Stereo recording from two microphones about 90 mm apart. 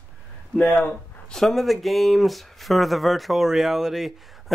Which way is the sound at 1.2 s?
5° left (ahead or behind).